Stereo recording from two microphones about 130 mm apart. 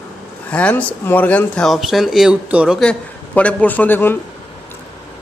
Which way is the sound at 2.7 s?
10° left (ahead or behind).